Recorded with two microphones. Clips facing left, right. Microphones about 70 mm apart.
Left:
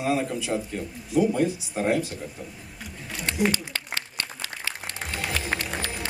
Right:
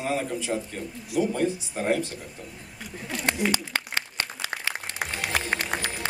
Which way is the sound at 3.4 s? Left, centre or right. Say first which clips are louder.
Even; right.